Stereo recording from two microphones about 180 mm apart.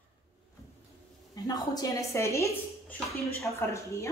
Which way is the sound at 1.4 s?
20° left (ahead or behind).